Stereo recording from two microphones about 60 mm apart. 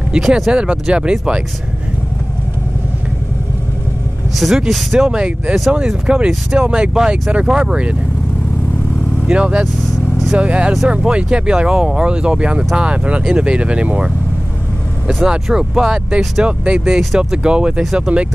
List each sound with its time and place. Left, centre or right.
0.2 s speech: centre
4.4 s speech: centre
9.3 s speech: centre
15.2 s speech: centre